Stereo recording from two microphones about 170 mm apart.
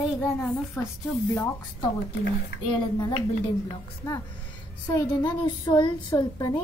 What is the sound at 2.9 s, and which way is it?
Speech, 25° left (ahead or behind).